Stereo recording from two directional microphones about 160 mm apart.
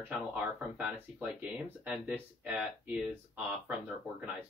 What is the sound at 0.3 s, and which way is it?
Speech, 10° right (ahead or behind).